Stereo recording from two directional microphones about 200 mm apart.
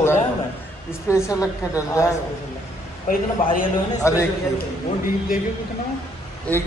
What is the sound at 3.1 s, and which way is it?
Speech, 40° left (ahead or behind).